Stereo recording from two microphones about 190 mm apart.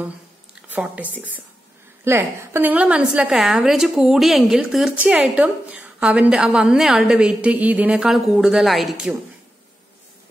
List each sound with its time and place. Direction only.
0.7 s a woman's voice: 10° right (ahead or behind)